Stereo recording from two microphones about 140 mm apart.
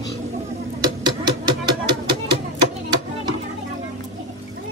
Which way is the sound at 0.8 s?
30° right (ahead or behind).